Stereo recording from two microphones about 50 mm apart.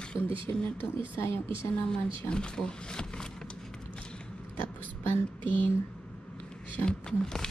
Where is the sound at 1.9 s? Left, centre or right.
Centre.